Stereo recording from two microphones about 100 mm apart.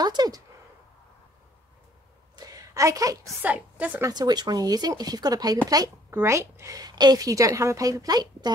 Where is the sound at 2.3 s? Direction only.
40° right (ahead or behind).